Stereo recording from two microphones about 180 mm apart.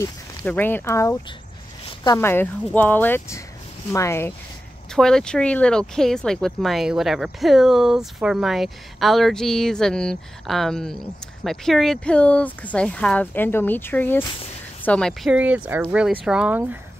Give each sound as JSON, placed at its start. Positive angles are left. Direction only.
{"t": 0.4, "sound": "speech", "side_deg": 10}
{"t": 4.9, "sound": "speech", "side_deg": 5}
{"t": 15.3, "sound": "speech", "side_deg": -10}